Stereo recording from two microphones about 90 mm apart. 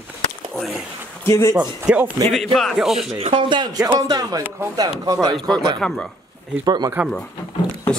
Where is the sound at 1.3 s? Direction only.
35° left (ahead or behind).